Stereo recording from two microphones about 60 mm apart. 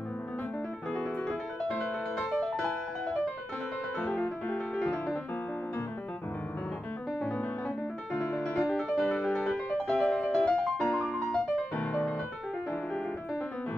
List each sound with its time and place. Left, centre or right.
0.9 s music: centre
4.0 s music: centre
7.2 s music: centre